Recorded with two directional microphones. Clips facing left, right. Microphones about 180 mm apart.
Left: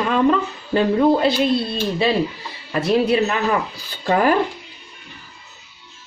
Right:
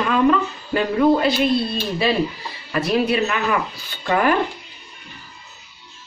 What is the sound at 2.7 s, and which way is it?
A woman's voice, 30° left (ahead or behind).